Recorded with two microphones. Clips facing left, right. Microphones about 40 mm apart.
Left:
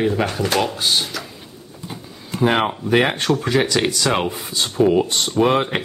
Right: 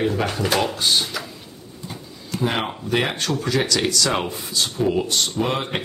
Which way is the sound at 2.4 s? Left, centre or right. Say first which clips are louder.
Left 6 dB; left.